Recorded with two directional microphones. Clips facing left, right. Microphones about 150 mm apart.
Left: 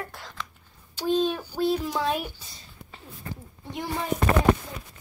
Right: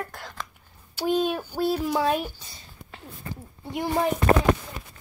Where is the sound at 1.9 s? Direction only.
55° right (ahead or behind).